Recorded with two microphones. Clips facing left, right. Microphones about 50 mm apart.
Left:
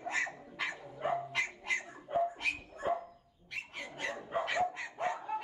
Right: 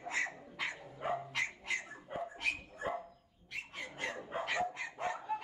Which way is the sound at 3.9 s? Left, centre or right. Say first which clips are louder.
Left 4 dB; left.